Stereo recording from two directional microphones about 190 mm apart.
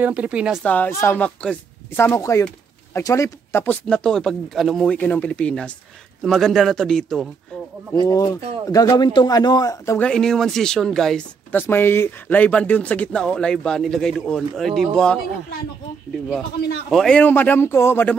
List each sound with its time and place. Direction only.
0.0 s a man's voice: 5° right (ahead or behind)
0.7 s a man's voice: 10° left (ahead or behind)
7.9 s a man's voice: 20° left (ahead or behind); by 14.9 s centre (ahead or behind)
16.9 s speech: 5° left (ahead or behind)